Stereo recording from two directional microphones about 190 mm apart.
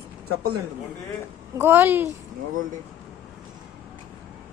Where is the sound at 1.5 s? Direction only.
10° right (ahead or behind).